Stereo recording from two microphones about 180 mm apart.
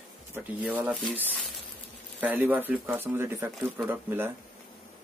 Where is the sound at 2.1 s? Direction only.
10° right (ahead or behind).